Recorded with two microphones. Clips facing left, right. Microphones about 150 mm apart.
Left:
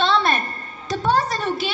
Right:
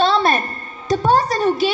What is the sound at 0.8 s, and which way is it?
Music, 35° right (ahead or behind).